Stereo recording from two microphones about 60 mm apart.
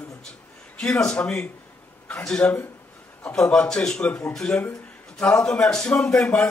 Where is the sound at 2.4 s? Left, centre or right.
Left.